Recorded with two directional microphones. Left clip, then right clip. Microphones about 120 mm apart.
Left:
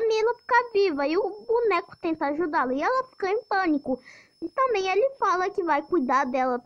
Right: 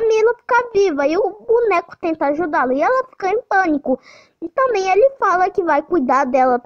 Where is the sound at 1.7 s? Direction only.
40° right (ahead or behind).